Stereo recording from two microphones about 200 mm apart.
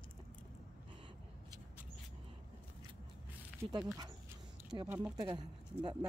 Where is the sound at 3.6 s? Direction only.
15° right (ahead or behind).